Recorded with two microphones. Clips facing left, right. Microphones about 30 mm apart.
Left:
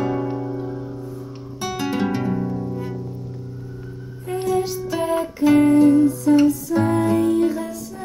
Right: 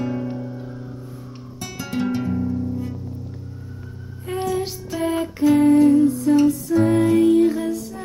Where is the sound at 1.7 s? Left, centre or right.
Left.